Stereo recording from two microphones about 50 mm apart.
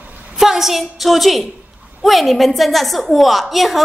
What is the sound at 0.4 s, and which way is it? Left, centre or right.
A woman's voice, centre.